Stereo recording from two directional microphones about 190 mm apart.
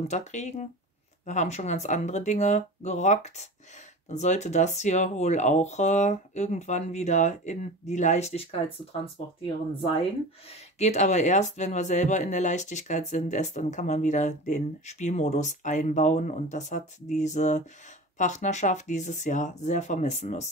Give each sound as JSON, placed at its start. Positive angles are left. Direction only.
{"t": 0.1, "sound": "speech", "side_deg": 35}
{"t": 10.5, "sound": "speech", "side_deg": 35}